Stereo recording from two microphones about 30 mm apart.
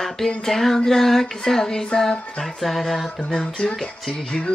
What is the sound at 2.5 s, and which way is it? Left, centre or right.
Speech, centre.